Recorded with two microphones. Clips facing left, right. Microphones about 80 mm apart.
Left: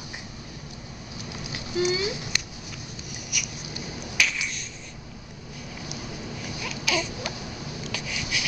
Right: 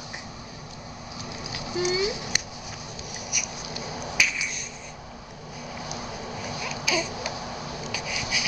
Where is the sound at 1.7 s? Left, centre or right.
Right.